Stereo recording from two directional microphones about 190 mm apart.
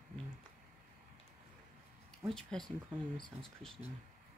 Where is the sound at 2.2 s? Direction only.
Centre (ahead or behind).